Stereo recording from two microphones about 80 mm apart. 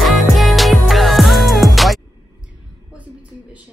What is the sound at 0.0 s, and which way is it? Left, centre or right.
Music, centre.